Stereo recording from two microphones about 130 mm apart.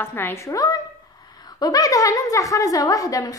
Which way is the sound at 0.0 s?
15° left (ahead or behind).